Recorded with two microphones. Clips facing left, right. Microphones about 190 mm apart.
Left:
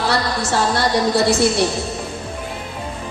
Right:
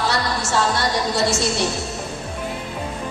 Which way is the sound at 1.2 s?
60° left (ahead or behind).